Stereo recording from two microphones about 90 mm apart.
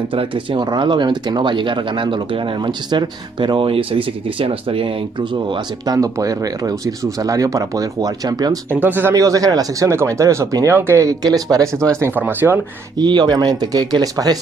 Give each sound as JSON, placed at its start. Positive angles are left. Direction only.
{"t": 0.1, "sound": "speech", "side_deg": -75}
{"t": 0.7, "sound": "speech", "side_deg": -55}
{"t": 5.9, "sound": "speech", "side_deg": -40}
{"t": 8.8, "sound": "speech", "side_deg": -20}
{"t": 9.1, "sound": "speech", "side_deg": -40}
{"t": 12.2, "sound": "speech", "side_deg": -20}
{"t": 13.0, "sound": "speech", "side_deg": -55}